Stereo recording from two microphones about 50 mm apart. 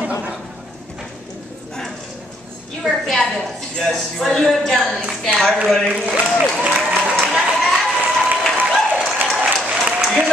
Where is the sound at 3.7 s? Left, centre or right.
Centre.